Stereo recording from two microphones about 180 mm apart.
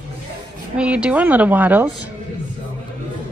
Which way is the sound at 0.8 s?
5° right (ahead or behind).